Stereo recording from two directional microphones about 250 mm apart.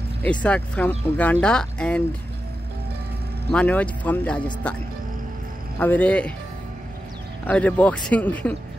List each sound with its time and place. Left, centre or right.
0.2 s speech: centre
3.5 s speech: centre
7.4 s speech: centre